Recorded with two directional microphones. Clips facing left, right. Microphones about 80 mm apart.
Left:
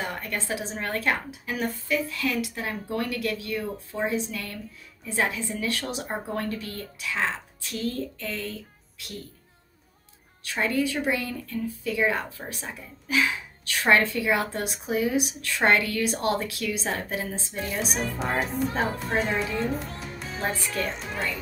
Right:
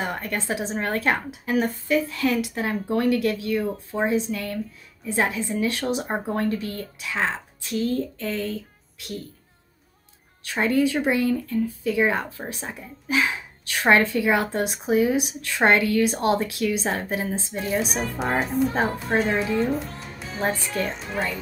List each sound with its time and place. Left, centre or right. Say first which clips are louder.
0.0 s speech: right 4 dB; right
10.4 s speech: right 5 dB; right
17.3 s speech: right 4 dB; centre
18.2 s speech: right 5 dB; centre